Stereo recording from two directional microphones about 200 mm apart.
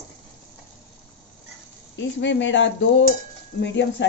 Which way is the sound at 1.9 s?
65° left (ahead or behind).